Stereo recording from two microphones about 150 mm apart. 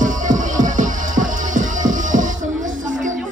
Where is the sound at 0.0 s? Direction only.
60° right (ahead or behind).